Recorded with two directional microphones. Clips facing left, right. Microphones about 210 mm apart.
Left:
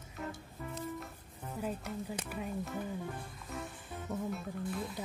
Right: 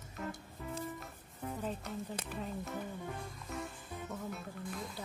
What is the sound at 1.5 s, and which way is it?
Speech, 10° left (ahead or behind).